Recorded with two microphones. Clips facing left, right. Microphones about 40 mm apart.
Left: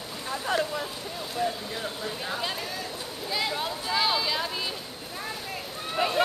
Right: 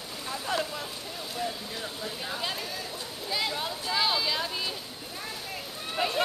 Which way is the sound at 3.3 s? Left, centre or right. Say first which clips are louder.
Left 2 dB; centre.